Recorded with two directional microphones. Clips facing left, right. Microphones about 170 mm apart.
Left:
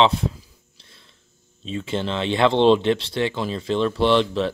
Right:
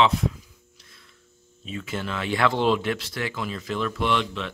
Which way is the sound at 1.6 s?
30° left (ahead or behind).